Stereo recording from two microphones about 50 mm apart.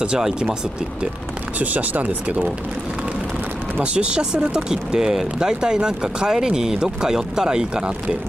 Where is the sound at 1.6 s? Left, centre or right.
Right.